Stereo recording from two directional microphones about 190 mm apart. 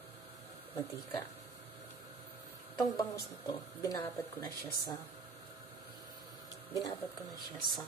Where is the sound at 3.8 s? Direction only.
15° left (ahead or behind).